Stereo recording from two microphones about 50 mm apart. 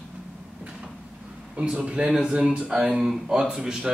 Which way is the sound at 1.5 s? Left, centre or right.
Right.